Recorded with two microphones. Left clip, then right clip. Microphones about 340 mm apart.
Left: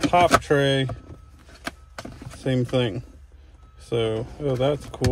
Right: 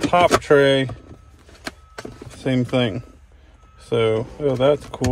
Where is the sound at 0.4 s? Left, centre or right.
Centre.